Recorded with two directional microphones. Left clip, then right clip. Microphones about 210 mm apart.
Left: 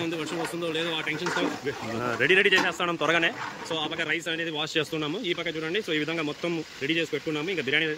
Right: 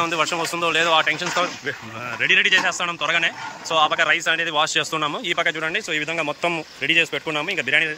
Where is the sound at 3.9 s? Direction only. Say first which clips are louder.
Right 10 dB; 5° left (ahead or behind).